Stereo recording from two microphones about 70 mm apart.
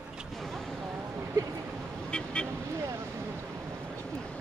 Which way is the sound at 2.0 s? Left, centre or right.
Centre.